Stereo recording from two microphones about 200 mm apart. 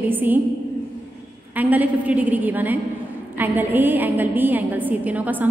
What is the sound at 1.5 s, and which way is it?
A woman's voice, 10° right (ahead or behind).